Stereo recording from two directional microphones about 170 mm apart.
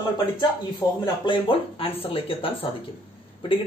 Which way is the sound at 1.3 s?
30° left (ahead or behind).